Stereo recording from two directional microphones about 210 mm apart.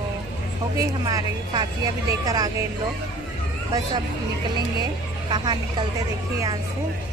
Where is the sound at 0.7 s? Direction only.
20° right (ahead or behind).